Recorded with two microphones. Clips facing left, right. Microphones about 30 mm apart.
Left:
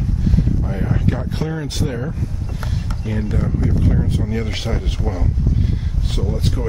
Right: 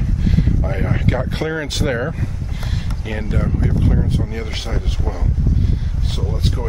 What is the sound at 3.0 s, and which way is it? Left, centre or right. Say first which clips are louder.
Speech: left 2 dB; right.